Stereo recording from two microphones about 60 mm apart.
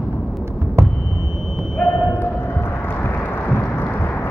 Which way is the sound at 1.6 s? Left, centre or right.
Centre.